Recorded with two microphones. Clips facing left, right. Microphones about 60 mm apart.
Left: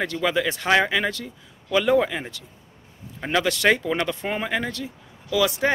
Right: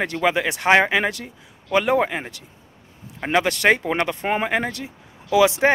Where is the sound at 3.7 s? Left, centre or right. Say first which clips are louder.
Right 1 dB; right.